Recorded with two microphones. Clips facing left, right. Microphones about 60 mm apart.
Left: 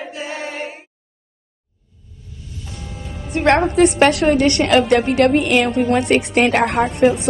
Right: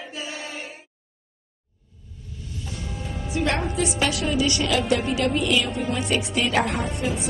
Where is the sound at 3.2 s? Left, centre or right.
Left.